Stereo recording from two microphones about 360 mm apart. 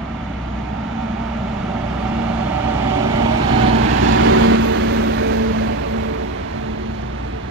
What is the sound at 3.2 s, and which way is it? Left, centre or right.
Vehicle, right.